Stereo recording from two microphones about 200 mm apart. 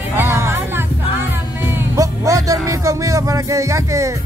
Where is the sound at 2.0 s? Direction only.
15° right (ahead or behind).